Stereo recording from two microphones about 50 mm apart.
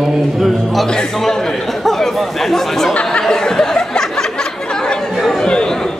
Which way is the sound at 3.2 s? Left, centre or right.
Centre.